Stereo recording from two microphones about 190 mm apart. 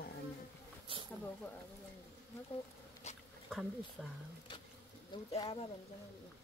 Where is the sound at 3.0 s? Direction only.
35° left (ahead or behind).